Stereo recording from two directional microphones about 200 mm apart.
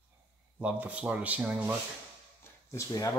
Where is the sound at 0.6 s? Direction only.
5° right (ahead or behind).